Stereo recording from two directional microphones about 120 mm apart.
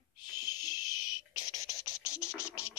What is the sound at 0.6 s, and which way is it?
Scratch, 30° left (ahead or behind).